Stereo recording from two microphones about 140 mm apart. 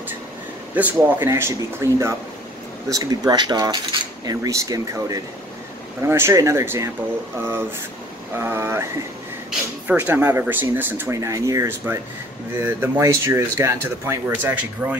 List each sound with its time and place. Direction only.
0.7 s cutlery: 15° right (ahead or behind)
8.4 s cutlery: 15° right (ahead or behind)
9.8 s speech: 15° right (ahead or behind)